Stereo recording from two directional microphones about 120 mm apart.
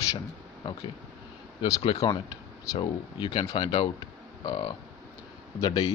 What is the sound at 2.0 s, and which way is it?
Speech, 40° left (ahead or behind).